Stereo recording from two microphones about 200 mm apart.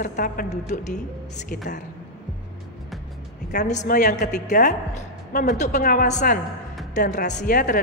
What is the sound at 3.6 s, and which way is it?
A woman's voice, 40° left (ahead or behind).